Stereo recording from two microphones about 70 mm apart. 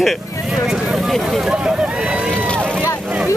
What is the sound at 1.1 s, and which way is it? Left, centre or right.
Speech, centre.